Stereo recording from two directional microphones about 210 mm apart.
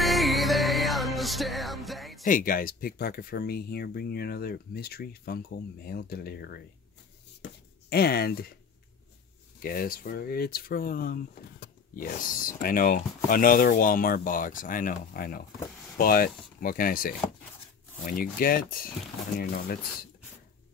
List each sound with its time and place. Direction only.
0.0 s music: centre (ahead or behind)
2.2 s speech: 40° left (ahead or behind)
7.9 s speech: 45° left (ahead or behind)
9.6 s speech: 45° left (ahead or behind)